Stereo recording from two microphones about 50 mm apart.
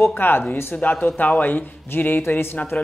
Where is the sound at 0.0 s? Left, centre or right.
Left.